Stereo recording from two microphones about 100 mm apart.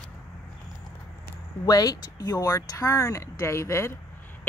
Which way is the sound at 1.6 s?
40° left (ahead or behind).